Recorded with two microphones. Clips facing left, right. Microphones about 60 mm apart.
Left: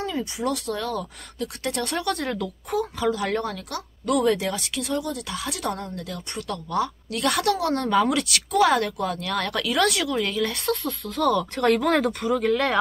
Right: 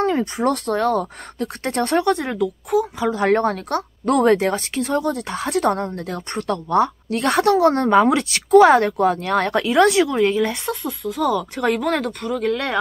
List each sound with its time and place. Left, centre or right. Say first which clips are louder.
0.0 s speech: right 8 dB; right
2.4 s speech: right 7 dB; centre
3.0 s speech: right 6 dB; right; by 12.7 s centre